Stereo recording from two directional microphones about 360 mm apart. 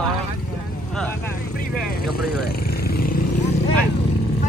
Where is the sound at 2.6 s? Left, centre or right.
Left.